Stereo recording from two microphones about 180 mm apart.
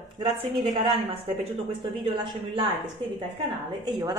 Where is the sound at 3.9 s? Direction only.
25° right (ahead or behind).